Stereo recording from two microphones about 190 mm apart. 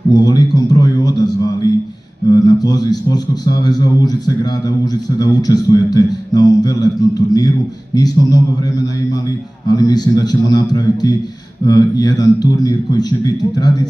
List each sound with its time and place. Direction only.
0.1 s a man's voice: 20° left (ahead or behind)